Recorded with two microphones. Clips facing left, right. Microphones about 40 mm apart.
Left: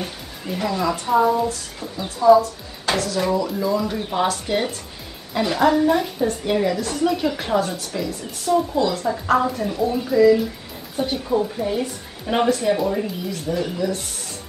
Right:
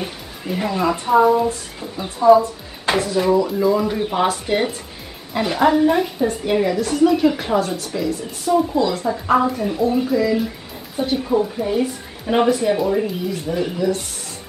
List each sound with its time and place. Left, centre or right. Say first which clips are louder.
0.6 s a woman's voice: right 2 dB; right
3.2 s a woman's voice: right 4 dB; centre